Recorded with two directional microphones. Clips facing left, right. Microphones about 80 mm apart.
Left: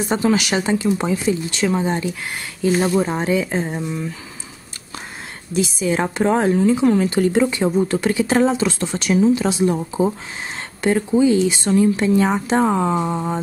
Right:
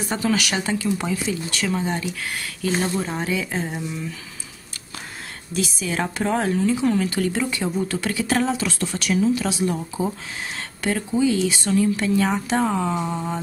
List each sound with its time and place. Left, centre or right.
0.1 s a woman's voice: left
5.5 s a woman's voice: left